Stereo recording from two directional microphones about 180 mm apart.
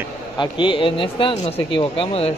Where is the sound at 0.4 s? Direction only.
25° left (ahead or behind).